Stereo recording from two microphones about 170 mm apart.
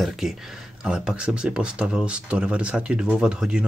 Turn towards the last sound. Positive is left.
turn(degrees=-5)  # may be behind; listen again after turning